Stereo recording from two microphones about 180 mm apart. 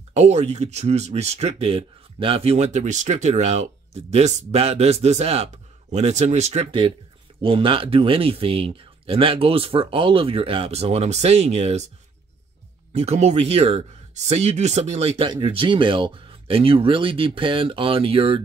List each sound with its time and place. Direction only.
0.1 s speech: 35° right (ahead or behind)
12.9 s speech: 35° right (ahead or behind)